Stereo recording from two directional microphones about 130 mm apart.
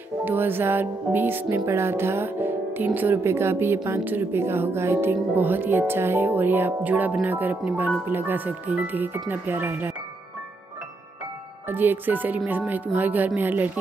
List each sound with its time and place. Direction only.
0.2 s music: 15° right (ahead or behind)
11.6 s music: 15° right (ahead or behind)